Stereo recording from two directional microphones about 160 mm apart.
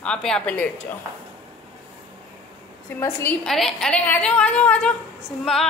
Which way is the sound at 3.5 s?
Centre (ahead or behind).